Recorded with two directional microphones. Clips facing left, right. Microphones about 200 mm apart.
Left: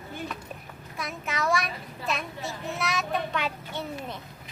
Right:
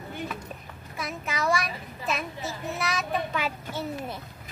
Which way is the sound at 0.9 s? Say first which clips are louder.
Right 1 dB; centre (ahead or behind).